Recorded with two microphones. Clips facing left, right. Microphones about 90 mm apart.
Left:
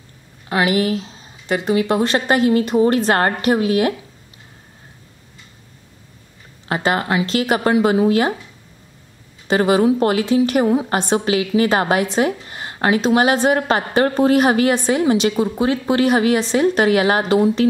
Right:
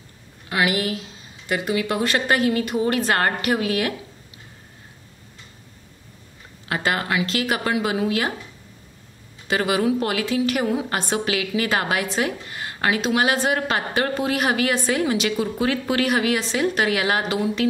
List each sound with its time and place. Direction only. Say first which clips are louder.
0.5 s a woman's voice: left 5 dB; 30° left (ahead or behind)
6.7 s a woman's voice: left 4 dB; 25° left (ahead or behind)
9.5 s a woman's voice: left 6 dB; 30° left (ahead or behind)